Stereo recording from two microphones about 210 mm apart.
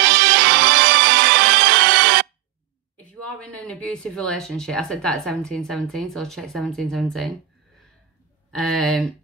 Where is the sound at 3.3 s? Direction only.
5° left (ahead or behind).